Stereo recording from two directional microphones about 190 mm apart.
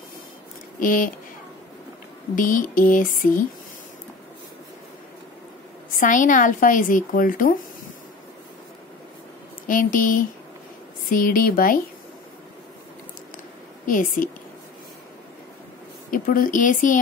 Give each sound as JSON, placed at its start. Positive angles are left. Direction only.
{"t": 0.7, "sound": "a woman's voice", "side_deg": 45}
{"t": 2.3, "sound": "a woman's voice", "side_deg": 45}
{"t": 5.9, "sound": "a woman's voice", "side_deg": 45}
{"t": 9.7, "sound": "a woman's voice", "side_deg": 45}
{"t": 13.8, "sound": "a woman's voice", "side_deg": 45}
{"t": 16.1, "sound": "a woman's voice", "side_deg": 45}